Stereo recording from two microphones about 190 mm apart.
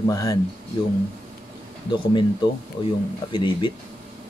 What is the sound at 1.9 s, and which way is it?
Speech, 25° left (ahead or behind).